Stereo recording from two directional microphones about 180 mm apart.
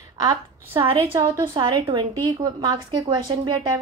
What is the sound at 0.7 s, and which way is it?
A woman's voice, 30° right (ahead or behind).